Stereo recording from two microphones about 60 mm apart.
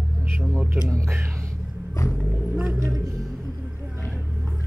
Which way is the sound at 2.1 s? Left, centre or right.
Centre.